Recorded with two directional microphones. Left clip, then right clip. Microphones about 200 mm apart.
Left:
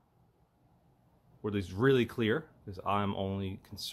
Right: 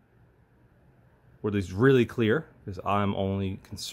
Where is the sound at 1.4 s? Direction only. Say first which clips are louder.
Right 6 dB; 15° right (ahead or behind).